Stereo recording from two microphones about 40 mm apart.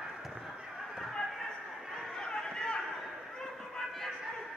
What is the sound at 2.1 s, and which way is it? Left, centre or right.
Run, centre.